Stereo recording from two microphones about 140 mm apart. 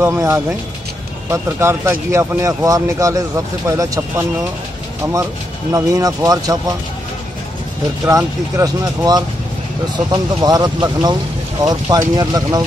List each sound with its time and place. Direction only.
0.0 s speech: 20° right (ahead or behind)
5.7 s speech: 25° right (ahead or behind)
8.0 s speech: 20° right (ahead or behind)
10.4 s speech: 30° right (ahead or behind)